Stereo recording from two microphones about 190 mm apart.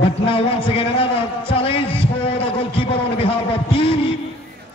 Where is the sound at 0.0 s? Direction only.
30° left (ahead or behind).